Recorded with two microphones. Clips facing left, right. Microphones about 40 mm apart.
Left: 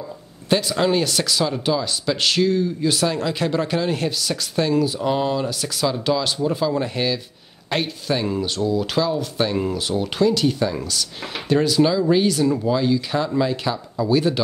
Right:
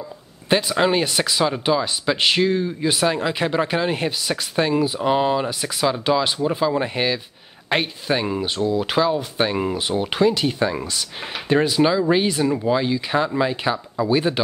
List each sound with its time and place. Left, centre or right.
0.5 s speech: right